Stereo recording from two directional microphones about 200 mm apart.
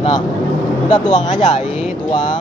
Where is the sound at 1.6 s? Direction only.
Centre (ahead or behind).